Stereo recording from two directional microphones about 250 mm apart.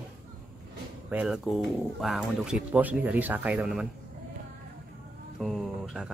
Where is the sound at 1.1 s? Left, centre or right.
Centre.